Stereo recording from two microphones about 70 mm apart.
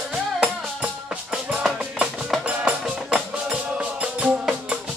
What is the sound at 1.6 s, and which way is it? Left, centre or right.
Music, centre.